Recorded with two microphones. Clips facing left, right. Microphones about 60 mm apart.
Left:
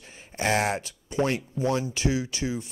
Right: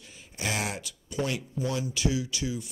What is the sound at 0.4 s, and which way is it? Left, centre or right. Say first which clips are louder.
Speech: left 7 dB; left.